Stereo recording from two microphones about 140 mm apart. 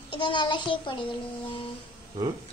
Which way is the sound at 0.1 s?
35° left (ahead or behind).